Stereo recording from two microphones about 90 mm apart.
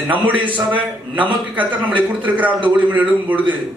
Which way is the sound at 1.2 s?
15° right (ahead or behind).